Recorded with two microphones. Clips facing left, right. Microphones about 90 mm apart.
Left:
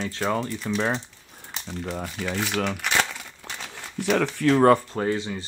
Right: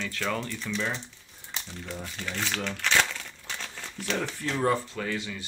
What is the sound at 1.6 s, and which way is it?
Speech, 65° left (ahead or behind).